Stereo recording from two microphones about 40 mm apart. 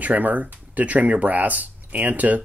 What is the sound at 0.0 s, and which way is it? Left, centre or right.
Speech, right.